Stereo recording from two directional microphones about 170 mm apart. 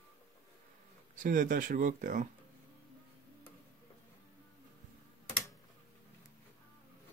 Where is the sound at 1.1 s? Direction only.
50° right (ahead or behind).